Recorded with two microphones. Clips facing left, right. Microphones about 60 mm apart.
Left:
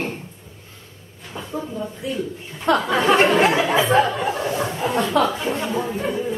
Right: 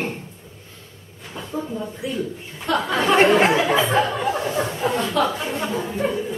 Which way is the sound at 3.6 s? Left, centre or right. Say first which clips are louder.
Left 2 dB; centre.